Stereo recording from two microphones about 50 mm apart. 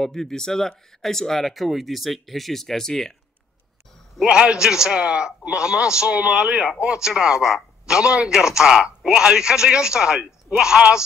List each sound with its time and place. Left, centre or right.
0.0 s speech: centre
4.2 s a man's voice: centre